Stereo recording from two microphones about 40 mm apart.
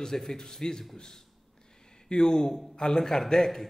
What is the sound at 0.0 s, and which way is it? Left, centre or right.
A man's voice, centre.